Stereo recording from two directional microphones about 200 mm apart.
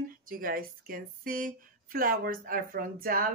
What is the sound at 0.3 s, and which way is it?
Speech, 45° right (ahead or behind).